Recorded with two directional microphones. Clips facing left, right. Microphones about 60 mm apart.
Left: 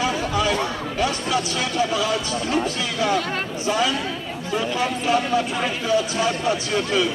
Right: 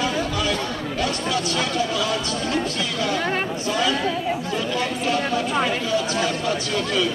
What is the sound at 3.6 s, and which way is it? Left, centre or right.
Speech, centre.